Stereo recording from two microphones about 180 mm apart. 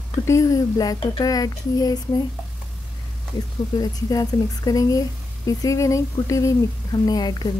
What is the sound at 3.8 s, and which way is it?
Speech, 20° left (ahead or behind).